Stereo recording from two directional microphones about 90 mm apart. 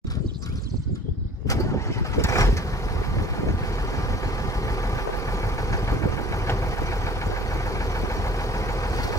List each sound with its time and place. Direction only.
2.1 s vehicle: 35° left (ahead or behind)